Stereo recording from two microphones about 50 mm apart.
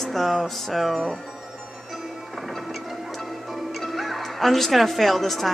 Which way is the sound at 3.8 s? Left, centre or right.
Centre.